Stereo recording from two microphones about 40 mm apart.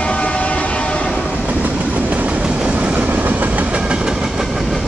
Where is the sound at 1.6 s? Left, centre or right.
Right.